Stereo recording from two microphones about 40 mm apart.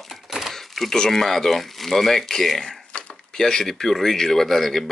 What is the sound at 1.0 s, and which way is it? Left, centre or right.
Speech, centre.